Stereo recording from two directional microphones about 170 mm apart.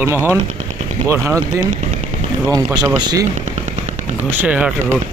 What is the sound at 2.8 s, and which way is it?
Speech, 25° right (ahead or behind).